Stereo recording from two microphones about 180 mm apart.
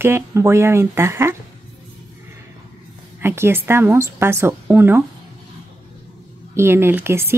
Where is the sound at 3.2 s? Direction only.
15° right (ahead or behind).